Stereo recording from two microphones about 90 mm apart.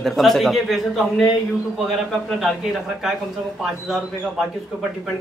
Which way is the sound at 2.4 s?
5° right (ahead or behind).